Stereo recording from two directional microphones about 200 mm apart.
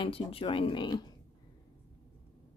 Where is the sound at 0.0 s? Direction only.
25° left (ahead or behind).